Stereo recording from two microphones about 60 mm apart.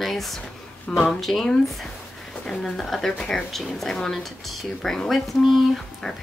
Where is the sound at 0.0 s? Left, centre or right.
Centre.